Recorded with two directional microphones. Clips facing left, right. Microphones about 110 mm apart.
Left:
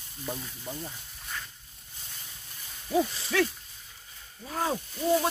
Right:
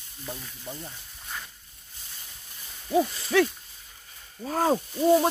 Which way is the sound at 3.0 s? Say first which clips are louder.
Right 2 dB; centre (ahead or behind).